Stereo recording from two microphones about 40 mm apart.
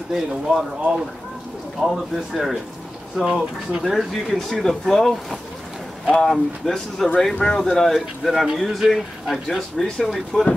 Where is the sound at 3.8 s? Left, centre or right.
Centre.